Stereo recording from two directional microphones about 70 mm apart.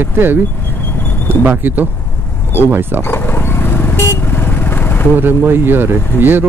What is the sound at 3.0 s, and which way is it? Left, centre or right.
Vehicle, left.